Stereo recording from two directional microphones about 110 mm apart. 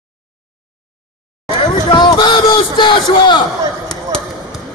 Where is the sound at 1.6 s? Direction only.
45° left (ahead or behind).